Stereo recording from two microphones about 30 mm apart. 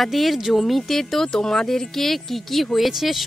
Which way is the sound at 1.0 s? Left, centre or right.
Centre.